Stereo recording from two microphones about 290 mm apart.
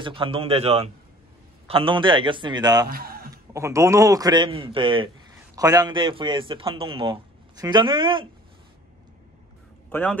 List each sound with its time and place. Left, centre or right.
0.0 s a man's voice: centre
2.9 s music: right
3.5 s a man's voice: centre
9.8 s a man's voice: centre